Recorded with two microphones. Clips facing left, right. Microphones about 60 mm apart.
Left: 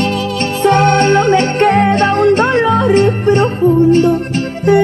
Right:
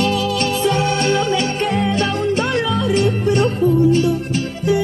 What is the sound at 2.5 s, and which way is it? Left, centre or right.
Music, left.